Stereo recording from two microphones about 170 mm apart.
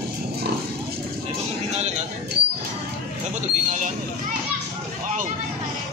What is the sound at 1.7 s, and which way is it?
Clip-clop, 40° right (ahead or behind).